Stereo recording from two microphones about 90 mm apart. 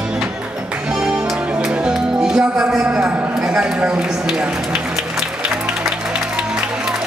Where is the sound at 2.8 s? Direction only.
15° right (ahead or behind).